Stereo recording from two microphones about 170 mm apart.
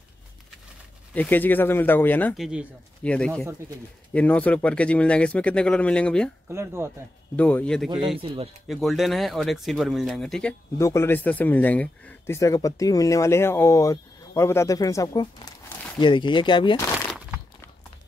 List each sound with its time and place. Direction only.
1.1 s speech: 10° left (ahead or behind)
2.3 s speech: 5° right (ahead or behind)
6.5 s speech: 15° right (ahead or behind)
7.3 s speech: 10° left (ahead or behind)
8.2 s speech: 35° right (ahead or behind)
8.6 s speech: centre (ahead or behind)
10.8 s speech: 15° left (ahead or behind)